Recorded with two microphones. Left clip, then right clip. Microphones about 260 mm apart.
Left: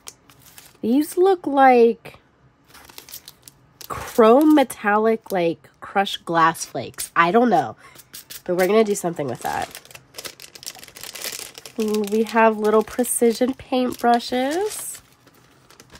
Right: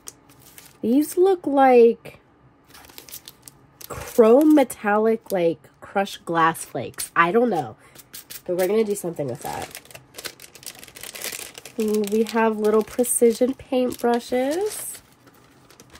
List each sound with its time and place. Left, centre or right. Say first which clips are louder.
0.8 s speech: left 1 dB; centre
2.7 s a sound: left 1 dB; centre
3.8 s speech: left 1 dB; centre
7.5 s a sound: left 7 dB; centre
8.5 s speech: left 3 dB; centre
9.4 s speech: left 5 dB; centre
10.1 s camera: left 1 dB; centre
12.0 s speech: left 5 dB; centre